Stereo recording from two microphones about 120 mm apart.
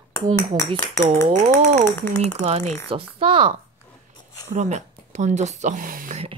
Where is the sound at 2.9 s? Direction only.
50° right (ahead or behind).